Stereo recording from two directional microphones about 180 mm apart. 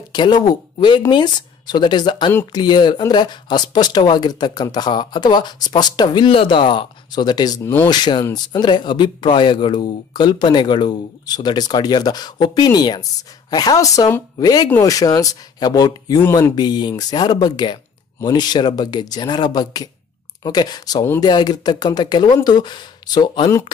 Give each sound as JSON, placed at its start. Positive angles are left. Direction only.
{"t": 0.1, "sound": "speech", "side_deg": 25}